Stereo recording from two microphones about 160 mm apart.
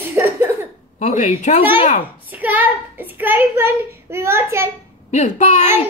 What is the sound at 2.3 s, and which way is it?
A child's voice, 10° right (ahead or behind).